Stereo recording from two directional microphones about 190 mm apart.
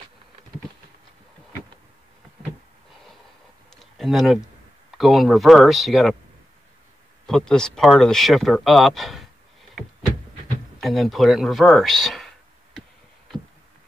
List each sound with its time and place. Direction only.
3.7 s a sound: centre (ahead or behind)
4.9 s speech: centre (ahead or behind)
7.2 s speech: 5° left (ahead or behind)
10.8 s speech: centre (ahead or behind)